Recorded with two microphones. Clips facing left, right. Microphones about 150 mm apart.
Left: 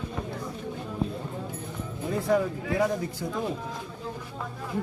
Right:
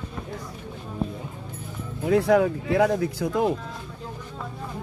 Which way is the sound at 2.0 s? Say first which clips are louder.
Right 6 dB; 85° right.